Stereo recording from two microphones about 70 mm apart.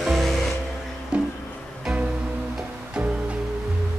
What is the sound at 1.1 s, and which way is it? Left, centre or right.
Music, centre.